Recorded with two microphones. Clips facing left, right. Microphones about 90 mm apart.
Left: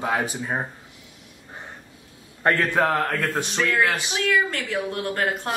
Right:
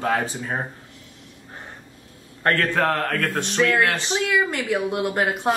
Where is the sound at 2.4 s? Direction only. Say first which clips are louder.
Even; 15° left (ahead or behind).